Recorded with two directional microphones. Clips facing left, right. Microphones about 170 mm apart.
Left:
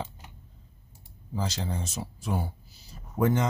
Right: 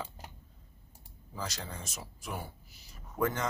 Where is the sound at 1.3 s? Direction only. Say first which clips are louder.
Left 8 dB; 25° left (ahead or behind).